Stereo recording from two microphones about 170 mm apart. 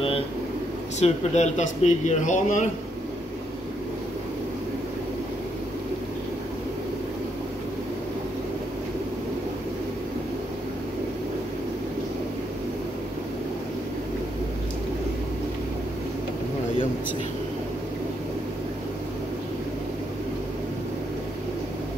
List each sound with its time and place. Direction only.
0.9 s speech: 40° left (ahead or behind)